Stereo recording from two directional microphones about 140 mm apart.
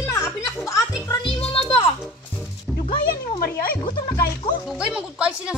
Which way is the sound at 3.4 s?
90° left.